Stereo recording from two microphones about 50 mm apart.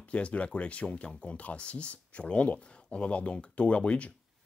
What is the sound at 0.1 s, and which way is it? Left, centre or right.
Speech, left.